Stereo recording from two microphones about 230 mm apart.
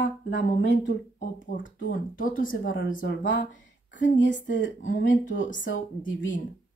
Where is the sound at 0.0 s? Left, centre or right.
Left.